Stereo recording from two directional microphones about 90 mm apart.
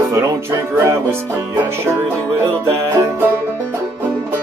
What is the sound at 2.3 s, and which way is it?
Music, 30° right (ahead or behind).